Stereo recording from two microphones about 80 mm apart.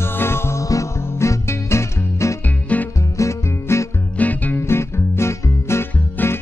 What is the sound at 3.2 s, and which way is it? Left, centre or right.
Music, left.